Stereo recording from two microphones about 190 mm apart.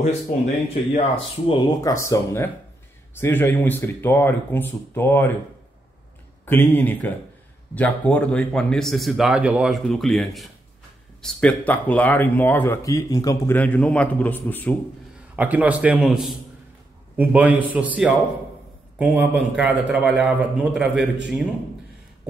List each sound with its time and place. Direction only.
0.9 s speech: 30° left (ahead or behind)
1.8 s speech: 15° left (ahead or behind)
6.4 s speech: 10° left (ahead or behind)
15.3 s a man's voice: 10° right (ahead or behind)